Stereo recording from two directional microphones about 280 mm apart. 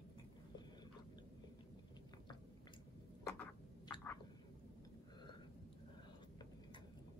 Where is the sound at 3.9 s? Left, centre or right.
Centre.